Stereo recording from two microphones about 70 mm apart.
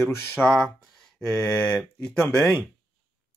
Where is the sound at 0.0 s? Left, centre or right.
Left.